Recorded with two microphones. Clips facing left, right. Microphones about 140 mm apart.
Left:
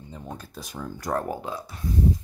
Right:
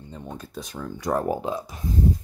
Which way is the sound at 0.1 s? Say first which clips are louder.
Right 3 dB; 5° left (ahead or behind).